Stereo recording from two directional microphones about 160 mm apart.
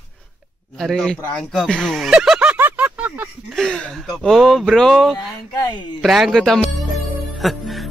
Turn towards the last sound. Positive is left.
turn(degrees=0)  # may be behind; listen again after turning